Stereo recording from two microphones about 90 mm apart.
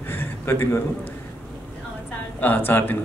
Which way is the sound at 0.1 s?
25° left (ahead or behind).